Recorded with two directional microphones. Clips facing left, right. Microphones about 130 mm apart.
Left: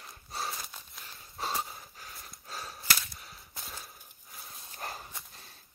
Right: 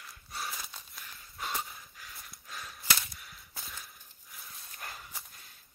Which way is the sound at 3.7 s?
25° left (ahead or behind).